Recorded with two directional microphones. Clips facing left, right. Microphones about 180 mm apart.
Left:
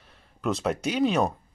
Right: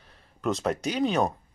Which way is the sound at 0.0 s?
Centre (ahead or behind).